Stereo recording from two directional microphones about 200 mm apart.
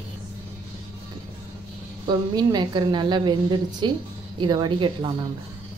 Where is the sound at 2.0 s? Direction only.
20° right (ahead or behind).